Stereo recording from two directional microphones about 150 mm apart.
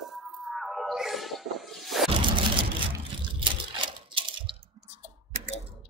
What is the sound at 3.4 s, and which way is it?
Coin, 35° right (ahead or behind).